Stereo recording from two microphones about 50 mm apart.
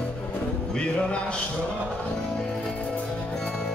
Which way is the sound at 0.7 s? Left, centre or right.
Centre.